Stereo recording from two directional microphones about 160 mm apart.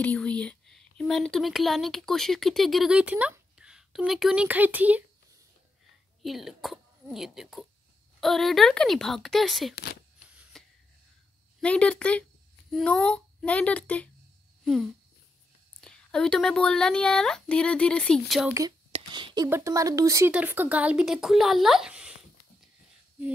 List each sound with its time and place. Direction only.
0.0 s speech: 10° left (ahead or behind); by 5.0 s 10° right (ahead or behind)
6.2 s speech: centre (ahead or behind)
10.5 s a sound: 5° left (ahead or behind)
11.6 s a child's voice: 5° left (ahead or behind)
18.9 s whispering: 35° right (ahead or behind)
19.5 s speech: 20° right (ahead or behind)
20.2 s speech: 10° right (ahead or behind)